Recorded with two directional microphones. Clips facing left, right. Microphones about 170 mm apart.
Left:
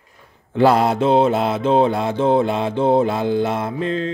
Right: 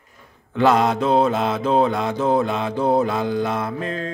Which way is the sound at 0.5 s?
30° left (ahead or behind).